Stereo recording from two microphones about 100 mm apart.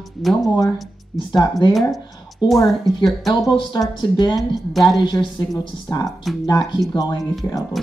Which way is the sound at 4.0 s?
50° left (ahead or behind).